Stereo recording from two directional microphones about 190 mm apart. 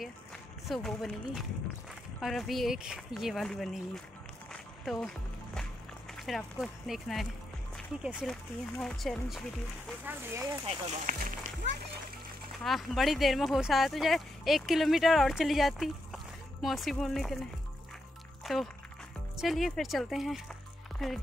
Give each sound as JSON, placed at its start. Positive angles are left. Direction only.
{"t": 0.7, "sound": "speech", "side_deg": 5}
{"t": 4.5, "sound": "music", "side_deg": 5}
{"t": 6.1, "sound": "speech", "side_deg": 0}
{"t": 10.0, "sound": "speech", "side_deg": -10}
{"t": 10.7, "sound": "speech", "side_deg": -35}
{"t": 12.5, "sound": "speech", "side_deg": 0}
{"t": 18.4, "sound": "a sound", "side_deg": 0}
{"t": 19.3, "sound": "speech", "side_deg": 0}